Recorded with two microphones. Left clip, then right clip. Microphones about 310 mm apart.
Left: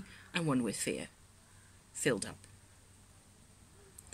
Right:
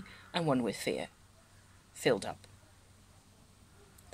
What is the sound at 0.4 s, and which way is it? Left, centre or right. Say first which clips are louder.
Speech: right 3 dB; right.